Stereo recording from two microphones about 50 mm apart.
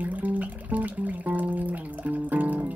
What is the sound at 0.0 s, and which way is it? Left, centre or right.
Music, right.